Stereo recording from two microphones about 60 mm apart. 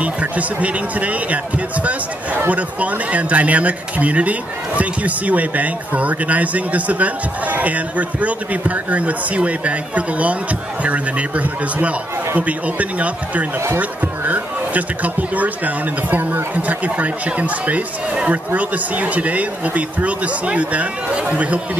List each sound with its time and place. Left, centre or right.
0.0 s speech: right